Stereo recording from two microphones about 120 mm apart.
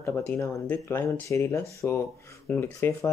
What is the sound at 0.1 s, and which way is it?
Speech, 10° left (ahead or behind).